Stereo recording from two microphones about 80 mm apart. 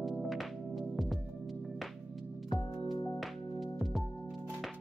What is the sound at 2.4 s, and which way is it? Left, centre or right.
Music, centre.